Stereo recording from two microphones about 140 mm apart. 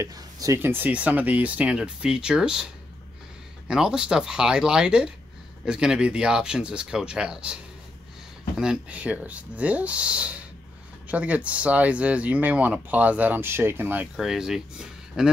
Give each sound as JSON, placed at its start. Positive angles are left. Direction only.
{"t": 0.0, "sound": "speech", "side_deg": -25}
{"t": 8.5, "sound": "speech", "side_deg": -5}
{"t": 14.1, "sound": "speech", "side_deg": -5}